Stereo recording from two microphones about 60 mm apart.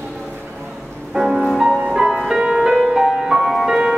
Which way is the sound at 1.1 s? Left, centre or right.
Centre.